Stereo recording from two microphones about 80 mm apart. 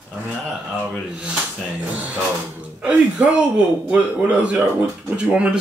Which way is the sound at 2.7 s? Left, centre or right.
Centre.